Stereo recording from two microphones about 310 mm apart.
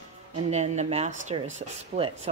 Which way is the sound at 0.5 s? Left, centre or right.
Right.